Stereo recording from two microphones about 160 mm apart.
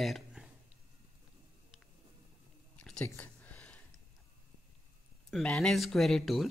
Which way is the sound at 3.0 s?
10° left (ahead or behind).